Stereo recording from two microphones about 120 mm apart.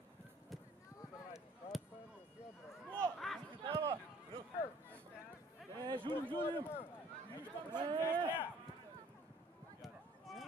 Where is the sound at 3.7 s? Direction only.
25° right (ahead or behind).